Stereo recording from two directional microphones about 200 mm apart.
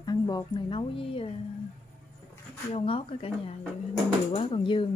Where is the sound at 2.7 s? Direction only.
30° left (ahead or behind).